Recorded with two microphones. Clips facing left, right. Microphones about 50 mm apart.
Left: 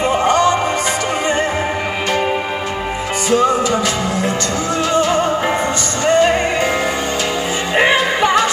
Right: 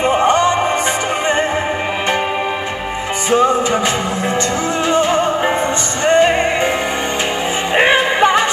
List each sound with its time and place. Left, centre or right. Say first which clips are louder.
0.1 s music: even; right
3.3 s music: right 1 dB; right
4.9 s music: even; right
7.7 s music: right 1 dB; right